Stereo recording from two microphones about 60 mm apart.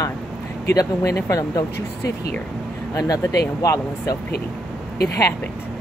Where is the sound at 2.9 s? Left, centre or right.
Left.